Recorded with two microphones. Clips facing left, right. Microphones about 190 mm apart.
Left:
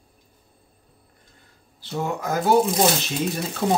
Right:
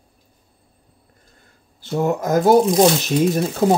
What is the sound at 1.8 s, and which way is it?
Speech, 45° right (ahead or behind).